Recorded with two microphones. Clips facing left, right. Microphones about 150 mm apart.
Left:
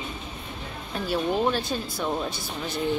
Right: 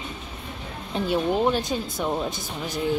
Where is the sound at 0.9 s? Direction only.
20° right (ahead or behind).